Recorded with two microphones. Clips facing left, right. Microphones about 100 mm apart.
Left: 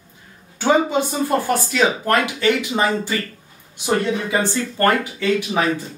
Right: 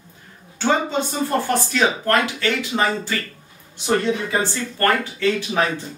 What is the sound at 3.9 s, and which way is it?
Speech, 15° left (ahead or behind).